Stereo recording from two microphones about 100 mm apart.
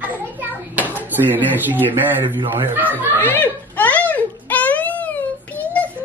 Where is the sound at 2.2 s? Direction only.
50° right (ahead or behind).